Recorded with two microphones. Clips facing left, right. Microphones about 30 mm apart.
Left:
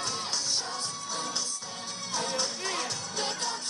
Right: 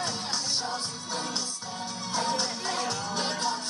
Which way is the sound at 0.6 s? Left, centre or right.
Right.